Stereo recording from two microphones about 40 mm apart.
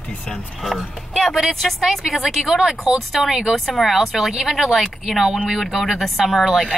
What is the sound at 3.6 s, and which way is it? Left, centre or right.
A woman's voice, centre.